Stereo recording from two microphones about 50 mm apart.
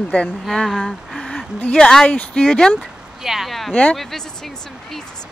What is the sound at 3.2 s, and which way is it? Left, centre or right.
Speech, centre.